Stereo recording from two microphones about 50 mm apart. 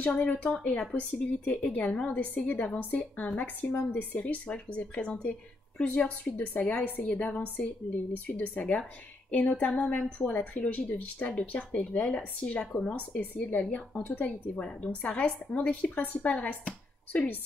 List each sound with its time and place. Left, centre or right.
0.0 s speech: left
6.3 s speech: left